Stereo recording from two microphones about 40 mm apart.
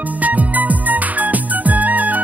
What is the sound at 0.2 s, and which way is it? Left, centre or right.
Music, right.